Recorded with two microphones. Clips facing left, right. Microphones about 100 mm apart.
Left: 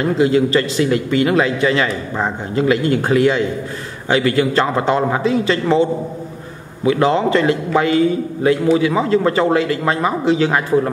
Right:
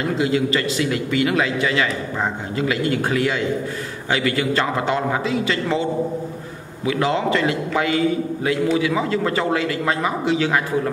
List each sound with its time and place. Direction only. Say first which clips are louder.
0.2 s a man's voice: left 6 dB; 35° left (ahead or behind)
6.9 s a man's voice: left 5 dB; 35° left (ahead or behind)